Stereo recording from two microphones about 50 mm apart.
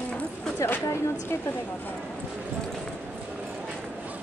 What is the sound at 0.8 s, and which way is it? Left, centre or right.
Speech, left.